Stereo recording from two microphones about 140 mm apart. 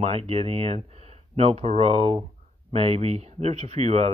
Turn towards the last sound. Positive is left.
turn(degrees=-50)  # may be behind; listen again after turning